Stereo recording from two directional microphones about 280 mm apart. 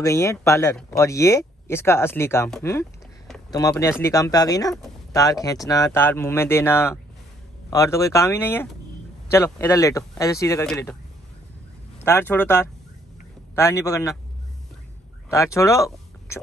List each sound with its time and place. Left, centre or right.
0.0 s speech: centre
12.0 s speech: centre
15.2 s speech: centre